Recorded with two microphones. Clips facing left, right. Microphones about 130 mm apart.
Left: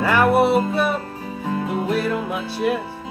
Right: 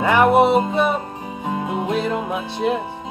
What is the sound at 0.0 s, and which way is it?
Music, 20° right (ahead or behind).